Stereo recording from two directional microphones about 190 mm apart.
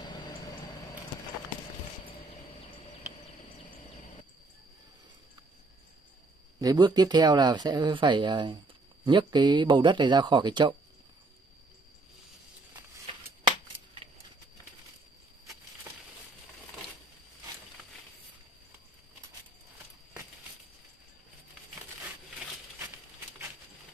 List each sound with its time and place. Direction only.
0.0 s vehicle: 25° left (ahead or behind)
6.6 s speech: 20° right (ahead or behind)